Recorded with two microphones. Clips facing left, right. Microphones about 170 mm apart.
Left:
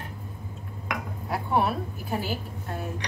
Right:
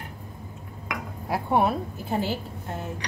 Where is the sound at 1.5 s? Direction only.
25° right (ahead or behind).